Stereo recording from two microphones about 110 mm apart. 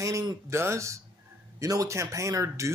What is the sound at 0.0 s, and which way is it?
Speech, 35° right (ahead or behind).